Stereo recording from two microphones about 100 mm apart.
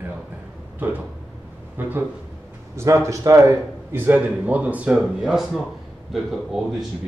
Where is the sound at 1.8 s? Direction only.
20° right (ahead or behind); by 6.9 s centre (ahead or behind).